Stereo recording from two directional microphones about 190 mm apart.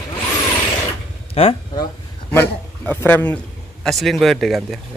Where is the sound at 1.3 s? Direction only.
30° left (ahead or behind).